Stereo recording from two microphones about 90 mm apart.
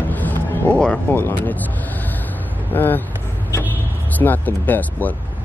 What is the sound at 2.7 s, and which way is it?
Speech, 20° left (ahead or behind).